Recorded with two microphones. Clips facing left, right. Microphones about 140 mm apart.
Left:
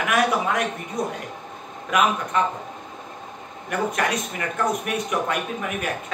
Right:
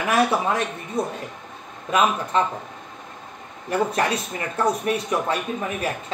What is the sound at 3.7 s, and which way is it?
Speech, 30° right (ahead or behind).